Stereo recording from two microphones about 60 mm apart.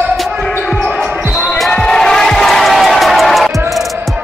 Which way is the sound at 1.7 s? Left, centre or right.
Centre.